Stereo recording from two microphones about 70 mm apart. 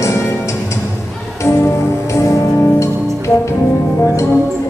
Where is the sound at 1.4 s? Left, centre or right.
Left.